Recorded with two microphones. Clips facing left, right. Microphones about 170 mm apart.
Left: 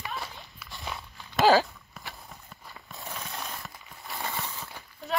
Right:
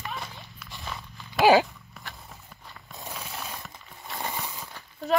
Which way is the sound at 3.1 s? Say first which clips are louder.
Even; centre (ahead or behind).